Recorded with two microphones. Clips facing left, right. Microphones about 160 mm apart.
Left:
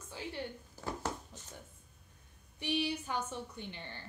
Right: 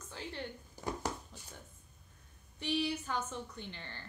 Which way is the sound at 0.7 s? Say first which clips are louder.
Right 1 dB; 15° right (ahead or behind).